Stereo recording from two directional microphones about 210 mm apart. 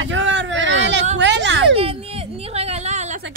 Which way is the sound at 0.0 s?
65° right (ahead or behind).